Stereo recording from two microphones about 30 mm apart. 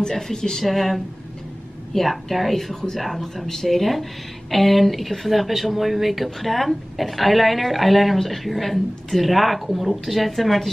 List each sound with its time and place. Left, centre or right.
0.0 s speech: centre
0.7 s speech: centre
2.7 s speech: centre
3.0 s speech: centre